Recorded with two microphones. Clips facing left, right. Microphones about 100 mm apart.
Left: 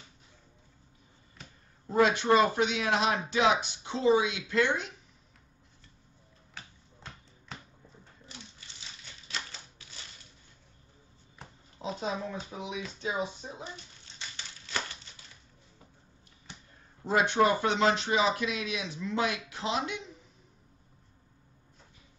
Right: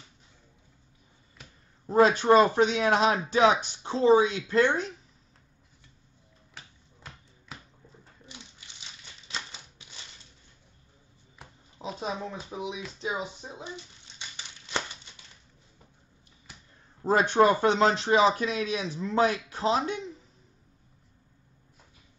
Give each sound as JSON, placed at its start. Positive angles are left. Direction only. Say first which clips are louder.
{"t": 1.9, "sound": "speech", "louder": "right 4 dB", "side_deg": -35}
{"t": 9.3, "sound": "typewriter", "louder": "right 1 dB", "side_deg": -20}
{"t": 12.0, "sound": "speech", "louder": "right 1 dB", "side_deg": -20}
{"t": 14.1, "sound": "crumpling", "louder": "even", "side_deg": -20}
{"t": 17.0, "sound": "speech", "louder": "right 4 dB", "side_deg": -40}